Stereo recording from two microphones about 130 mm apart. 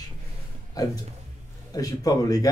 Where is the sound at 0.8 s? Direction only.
30° left (ahead or behind).